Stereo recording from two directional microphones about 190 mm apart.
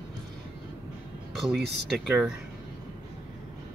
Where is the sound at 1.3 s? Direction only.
Centre (ahead or behind).